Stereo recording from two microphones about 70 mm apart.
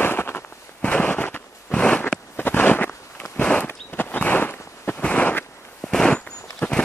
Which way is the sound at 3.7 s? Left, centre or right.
Left.